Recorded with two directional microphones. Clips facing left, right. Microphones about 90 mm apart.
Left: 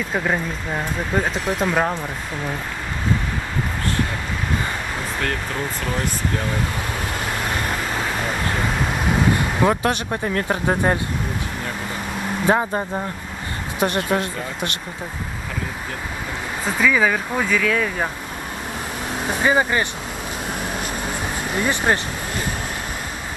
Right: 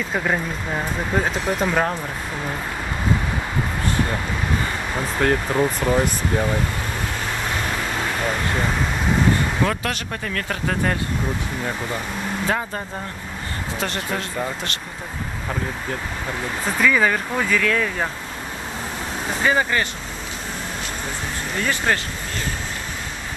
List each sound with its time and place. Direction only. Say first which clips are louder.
0.1 s speech: even; centre (ahead or behind)
5.2 s speech: right 8 dB; 15° right (ahead or behind)
9.6 s speech: left 4 dB; 20° left (ahead or behind)
12.4 s speech: left 8 dB; 25° left (ahead or behind)
16.6 s speech: even; 5° left (ahead or behind)
19.4 s speech: left 1 dB; 15° left (ahead or behind)
21.5 s speech: left 2 dB; 15° left (ahead or behind)